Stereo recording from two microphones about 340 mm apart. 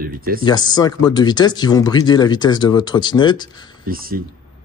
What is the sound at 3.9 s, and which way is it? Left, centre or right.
Speech, right.